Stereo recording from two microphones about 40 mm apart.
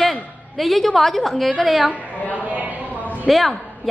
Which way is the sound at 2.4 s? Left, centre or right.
Right.